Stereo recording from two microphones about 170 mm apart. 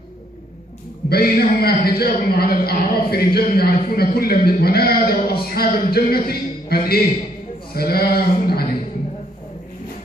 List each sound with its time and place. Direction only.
1.0 s a man's voice: 65° left (ahead or behind)